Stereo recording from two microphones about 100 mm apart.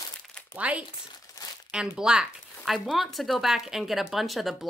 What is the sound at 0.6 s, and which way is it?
A woman's voice, 15° right (ahead or behind).